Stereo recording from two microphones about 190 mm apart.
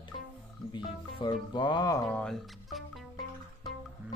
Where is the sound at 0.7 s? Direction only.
25° left (ahead or behind).